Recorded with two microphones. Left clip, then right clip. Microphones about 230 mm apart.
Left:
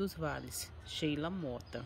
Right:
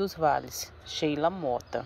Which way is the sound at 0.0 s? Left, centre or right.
Centre.